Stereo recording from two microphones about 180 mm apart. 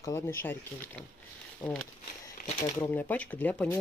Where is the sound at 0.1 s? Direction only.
15° left (ahead or behind).